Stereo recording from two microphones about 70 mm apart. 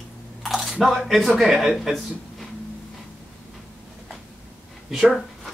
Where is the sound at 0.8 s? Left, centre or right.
Centre.